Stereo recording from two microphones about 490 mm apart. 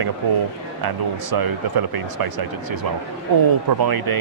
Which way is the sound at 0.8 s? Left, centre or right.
Right.